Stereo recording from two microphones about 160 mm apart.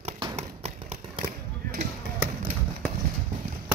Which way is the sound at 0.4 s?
40° right (ahead or behind).